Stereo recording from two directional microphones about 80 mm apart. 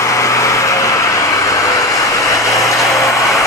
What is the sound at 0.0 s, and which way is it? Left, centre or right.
Vehicle, left.